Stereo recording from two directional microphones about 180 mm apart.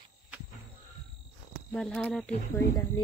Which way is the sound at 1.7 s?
5° left (ahead or behind).